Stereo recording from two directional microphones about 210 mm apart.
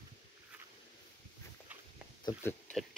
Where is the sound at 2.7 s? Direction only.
5° left (ahead or behind).